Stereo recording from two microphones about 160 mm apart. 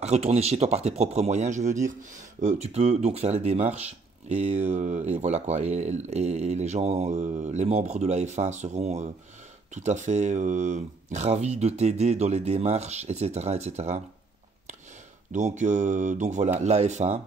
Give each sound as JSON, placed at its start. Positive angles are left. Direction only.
{"t": 0.0, "sound": "speech", "side_deg": -40}
{"t": 15.3, "sound": "speech", "side_deg": -50}